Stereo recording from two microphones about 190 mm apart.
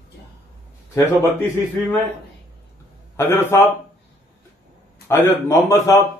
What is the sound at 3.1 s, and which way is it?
Speech, 10° left (ahead or behind).